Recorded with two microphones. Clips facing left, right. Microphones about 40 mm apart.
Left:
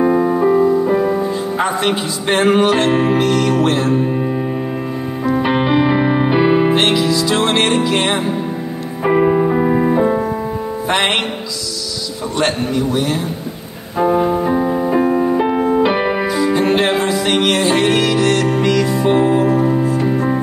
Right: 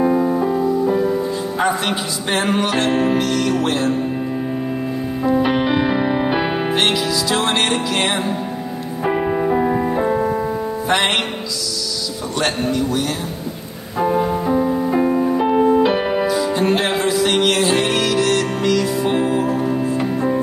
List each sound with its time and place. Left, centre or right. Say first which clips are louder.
0.0 s music: left 3 dB; left
1.6 s music: left 1 dB; centre
5.3 s music: left 2 dB; left
6.3 s music: left 6 dB; centre
9.0 s music: left 5 dB; left
9.9 s music: left 3 dB; centre
12.4 s music: left 2 dB; centre
15.9 s music: left 2 dB; left
16.2 s music: left 2 dB; centre